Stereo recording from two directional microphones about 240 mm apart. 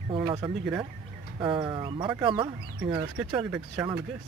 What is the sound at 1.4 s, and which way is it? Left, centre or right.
Speech, right.